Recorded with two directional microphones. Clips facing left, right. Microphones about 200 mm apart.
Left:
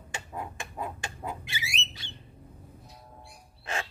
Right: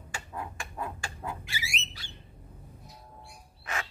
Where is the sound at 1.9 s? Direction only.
20° left (ahead or behind).